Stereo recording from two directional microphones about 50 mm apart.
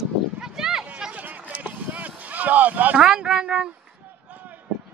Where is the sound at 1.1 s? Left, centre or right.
Right.